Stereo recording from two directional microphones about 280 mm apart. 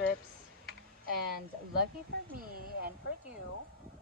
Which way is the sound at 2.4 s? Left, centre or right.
Right.